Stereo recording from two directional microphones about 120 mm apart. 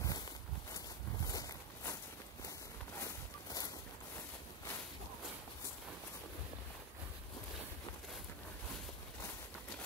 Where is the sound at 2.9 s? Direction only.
30° left (ahead or behind).